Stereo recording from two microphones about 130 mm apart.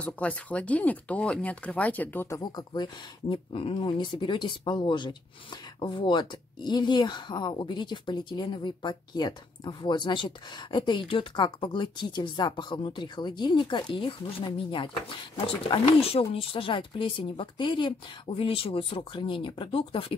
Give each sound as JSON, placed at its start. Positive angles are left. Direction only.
{"t": 0.0, "sound": "speech", "side_deg": 10}
{"t": 2.4, "sound": "speech", "side_deg": 35}